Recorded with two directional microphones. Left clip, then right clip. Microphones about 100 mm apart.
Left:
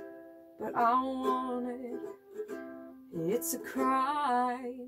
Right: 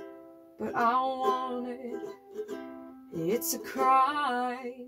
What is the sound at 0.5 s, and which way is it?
Music, 30° right (ahead or behind).